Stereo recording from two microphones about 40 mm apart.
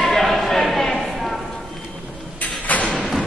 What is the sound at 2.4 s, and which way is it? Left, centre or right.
Sliding door, left.